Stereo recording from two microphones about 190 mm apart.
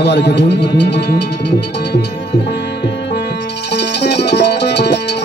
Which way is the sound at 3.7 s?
60° left (ahead or behind).